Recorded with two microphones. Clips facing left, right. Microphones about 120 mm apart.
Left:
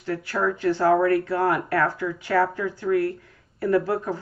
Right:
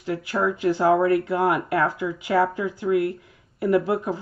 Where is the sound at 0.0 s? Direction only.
15° right (ahead or behind).